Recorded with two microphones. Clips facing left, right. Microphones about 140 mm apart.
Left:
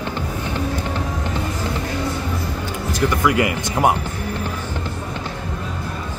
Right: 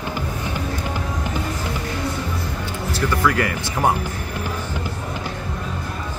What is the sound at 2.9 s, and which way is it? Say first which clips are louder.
Speech: left 2 dB; 20° left (ahead or behind).